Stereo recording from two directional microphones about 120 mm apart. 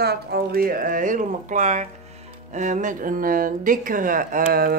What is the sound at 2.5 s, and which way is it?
Music, 90° right.